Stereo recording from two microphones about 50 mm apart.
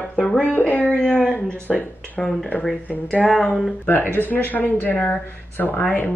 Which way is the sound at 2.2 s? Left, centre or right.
Centre.